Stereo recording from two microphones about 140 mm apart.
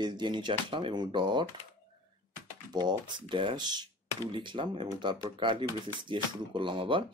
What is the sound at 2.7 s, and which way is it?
Speech, 30° right (ahead or behind).